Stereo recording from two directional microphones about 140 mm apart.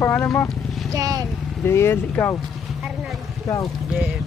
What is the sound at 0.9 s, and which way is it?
Speech, 25° right (ahead or behind).